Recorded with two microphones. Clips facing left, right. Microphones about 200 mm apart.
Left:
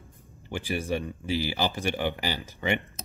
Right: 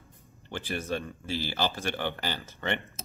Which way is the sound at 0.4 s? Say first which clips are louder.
Left 3 dB; 10° left (ahead or behind).